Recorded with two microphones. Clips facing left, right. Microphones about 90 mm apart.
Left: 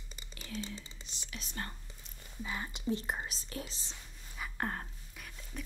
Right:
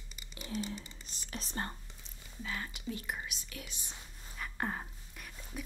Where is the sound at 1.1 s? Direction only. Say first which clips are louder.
Right 6 dB; 40° right (ahead or behind).